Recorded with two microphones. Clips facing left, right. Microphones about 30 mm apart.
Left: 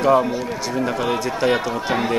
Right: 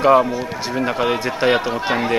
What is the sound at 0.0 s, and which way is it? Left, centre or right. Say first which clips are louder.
Speech: right 3 dB; right.